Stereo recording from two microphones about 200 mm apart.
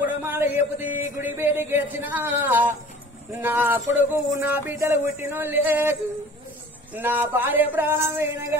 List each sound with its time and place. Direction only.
0.0 s a sound: 10° right (ahead or behind)
0.8 s speech: 40° left (ahead or behind)
1.2 s speech: 10° right (ahead or behind)